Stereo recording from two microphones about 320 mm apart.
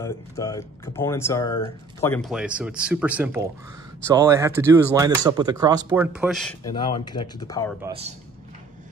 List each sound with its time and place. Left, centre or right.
0.0 s speech: centre
6.7 s speech: centre
7.8 s speech: centre